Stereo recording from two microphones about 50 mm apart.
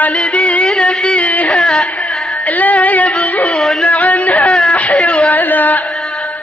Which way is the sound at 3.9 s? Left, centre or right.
Left.